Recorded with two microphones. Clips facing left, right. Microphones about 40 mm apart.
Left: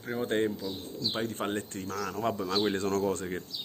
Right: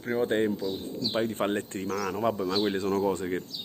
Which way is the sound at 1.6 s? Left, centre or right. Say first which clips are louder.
Right 4 dB; right.